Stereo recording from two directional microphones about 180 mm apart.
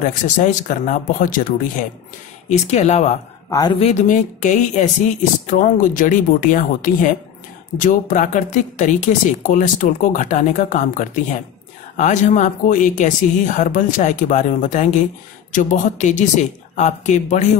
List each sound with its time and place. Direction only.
0.0 s speech: 45° left (ahead or behind)
3.4 s speech: 20° left (ahead or behind)
3.8 s speech: 45° left (ahead or behind)